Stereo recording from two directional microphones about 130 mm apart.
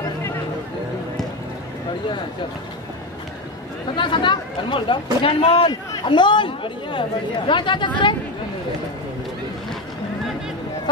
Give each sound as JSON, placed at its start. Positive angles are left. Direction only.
{"t": 3.9, "sound": "speech", "side_deg": 40}